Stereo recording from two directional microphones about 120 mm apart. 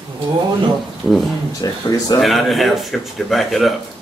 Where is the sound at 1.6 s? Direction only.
30° left (ahead or behind).